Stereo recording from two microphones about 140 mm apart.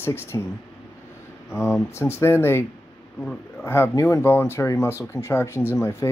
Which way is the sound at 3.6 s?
15° left (ahead or behind).